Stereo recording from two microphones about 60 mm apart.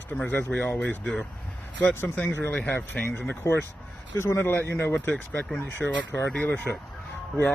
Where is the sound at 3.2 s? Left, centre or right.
Left.